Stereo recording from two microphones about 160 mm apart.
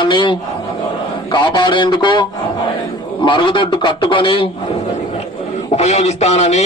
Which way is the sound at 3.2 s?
30° left (ahead or behind).